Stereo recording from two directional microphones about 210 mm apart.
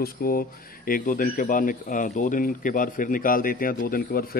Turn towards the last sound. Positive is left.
turn(degrees=45)  # may be behind; listen again after turning